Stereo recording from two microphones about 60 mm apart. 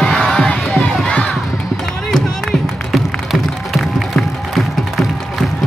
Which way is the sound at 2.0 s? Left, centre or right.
Centre.